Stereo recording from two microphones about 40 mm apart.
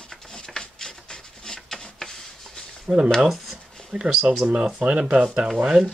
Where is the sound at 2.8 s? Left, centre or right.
Right.